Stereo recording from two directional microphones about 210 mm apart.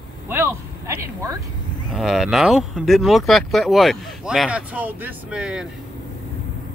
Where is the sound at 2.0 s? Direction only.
Centre (ahead or behind).